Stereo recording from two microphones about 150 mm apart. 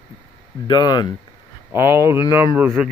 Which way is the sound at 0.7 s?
30° left (ahead or behind).